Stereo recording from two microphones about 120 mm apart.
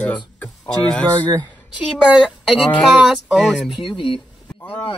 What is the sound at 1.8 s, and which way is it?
Speech, 5° right (ahead or behind).